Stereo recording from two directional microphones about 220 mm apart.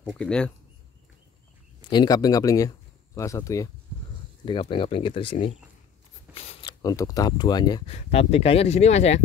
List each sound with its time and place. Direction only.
0.1 s speech: 5° left (ahead or behind)
1.8 s speech: 20° left (ahead or behind)